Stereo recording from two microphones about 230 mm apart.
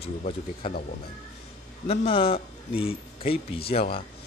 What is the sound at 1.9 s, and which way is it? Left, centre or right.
A man's voice, left.